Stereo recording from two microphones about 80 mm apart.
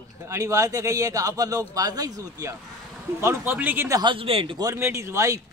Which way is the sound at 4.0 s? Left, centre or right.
Right.